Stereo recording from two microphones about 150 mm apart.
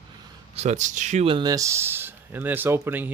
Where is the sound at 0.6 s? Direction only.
50° right (ahead or behind).